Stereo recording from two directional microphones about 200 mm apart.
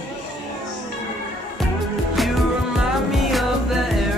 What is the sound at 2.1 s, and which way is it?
Music, centre (ahead or behind).